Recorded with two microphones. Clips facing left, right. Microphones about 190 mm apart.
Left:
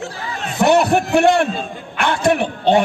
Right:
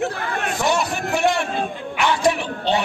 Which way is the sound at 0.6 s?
60° left (ahead or behind).